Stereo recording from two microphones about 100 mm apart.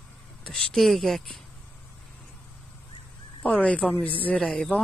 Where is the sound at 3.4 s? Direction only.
15° left (ahead or behind).